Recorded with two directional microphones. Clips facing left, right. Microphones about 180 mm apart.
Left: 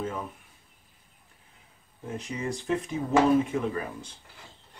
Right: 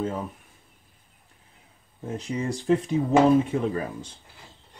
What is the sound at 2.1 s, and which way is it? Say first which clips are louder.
Speech: right 4 dB; 35° right (ahead or behind).